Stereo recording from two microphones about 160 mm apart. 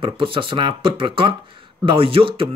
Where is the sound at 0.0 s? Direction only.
30° right (ahead or behind).